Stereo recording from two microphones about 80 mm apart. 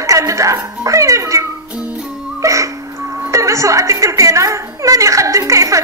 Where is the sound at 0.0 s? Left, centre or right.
Right.